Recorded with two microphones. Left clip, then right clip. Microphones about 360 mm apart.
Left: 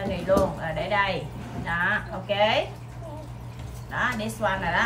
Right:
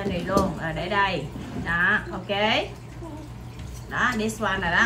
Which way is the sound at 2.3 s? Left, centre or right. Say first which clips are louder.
Left 1 dB; centre.